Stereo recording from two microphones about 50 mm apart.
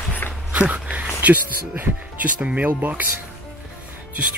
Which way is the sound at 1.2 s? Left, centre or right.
Right.